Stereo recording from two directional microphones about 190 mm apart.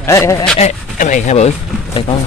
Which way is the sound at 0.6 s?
40° left (ahead or behind).